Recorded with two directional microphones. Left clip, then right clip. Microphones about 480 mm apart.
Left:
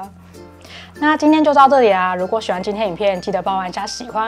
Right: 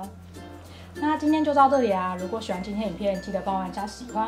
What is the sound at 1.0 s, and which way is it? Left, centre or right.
Speech, left.